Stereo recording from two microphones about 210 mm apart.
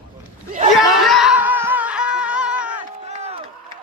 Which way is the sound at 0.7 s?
Centre (ahead or behind).